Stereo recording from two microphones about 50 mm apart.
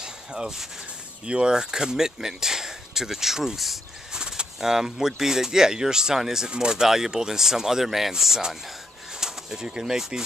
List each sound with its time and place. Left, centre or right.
0.0 s a sound: centre
1.2 s speech: centre
4.1 s speech: centre